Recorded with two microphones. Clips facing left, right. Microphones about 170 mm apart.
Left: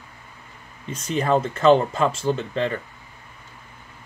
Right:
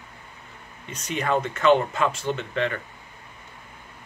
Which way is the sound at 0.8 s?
35° left (ahead or behind).